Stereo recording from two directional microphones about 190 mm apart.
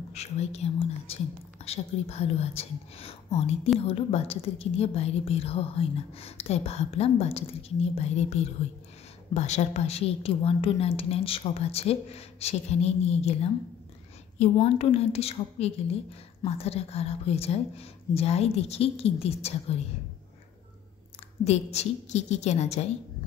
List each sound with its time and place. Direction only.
0.1 s a woman's voice: 35° left (ahead or behind)
21.5 s a woman's voice: 35° left (ahead or behind)